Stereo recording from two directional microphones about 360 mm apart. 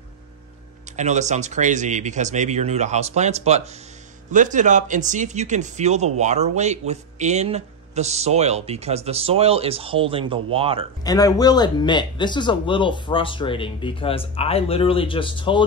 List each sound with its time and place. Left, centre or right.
0.9 s speech: centre
11.1 s speech: centre